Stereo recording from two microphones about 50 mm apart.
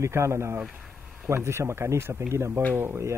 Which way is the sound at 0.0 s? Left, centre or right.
Right.